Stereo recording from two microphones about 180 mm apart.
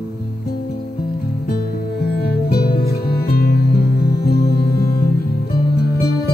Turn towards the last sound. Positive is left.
turn(degrees=60)  # may be behind; listen again after turning